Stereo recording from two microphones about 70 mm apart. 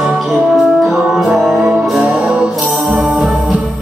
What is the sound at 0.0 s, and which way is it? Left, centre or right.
Music, centre.